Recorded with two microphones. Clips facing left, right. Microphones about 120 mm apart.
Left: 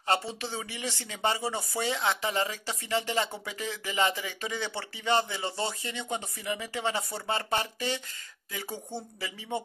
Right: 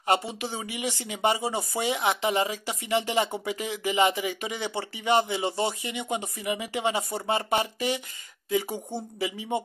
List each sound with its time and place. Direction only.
0.0 s speech: 15° right (ahead or behind)